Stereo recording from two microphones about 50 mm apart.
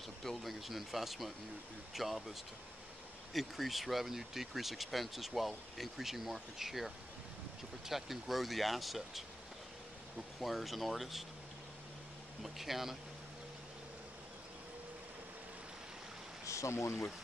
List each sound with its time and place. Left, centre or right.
0.2 s speech: centre
3.3 s speech: centre
7.9 s speech: centre
10.4 s speech: centre
12.4 s speech: centre
16.4 s speech: left